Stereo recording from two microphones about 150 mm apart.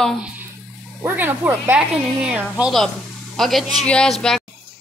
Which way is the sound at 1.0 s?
10° right (ahead or behind).